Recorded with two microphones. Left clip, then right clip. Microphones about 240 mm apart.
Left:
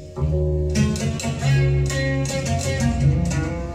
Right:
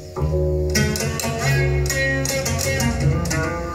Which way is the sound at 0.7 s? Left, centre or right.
Centre.